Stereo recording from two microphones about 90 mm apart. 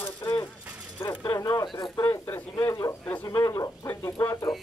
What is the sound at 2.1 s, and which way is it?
Speech, 25° left (ahead or behind).